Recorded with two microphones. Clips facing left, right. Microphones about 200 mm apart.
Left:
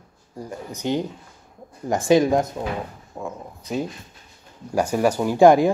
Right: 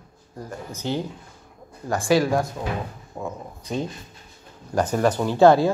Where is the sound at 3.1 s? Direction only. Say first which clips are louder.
Even; 5° left (ahead or behind).